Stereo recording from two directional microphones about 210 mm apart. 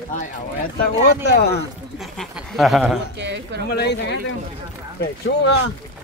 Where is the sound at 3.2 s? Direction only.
55° right (ahead or behind).